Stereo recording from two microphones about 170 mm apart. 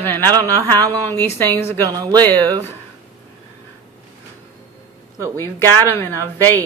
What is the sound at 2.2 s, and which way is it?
Speech, 10° left (ahead or behind).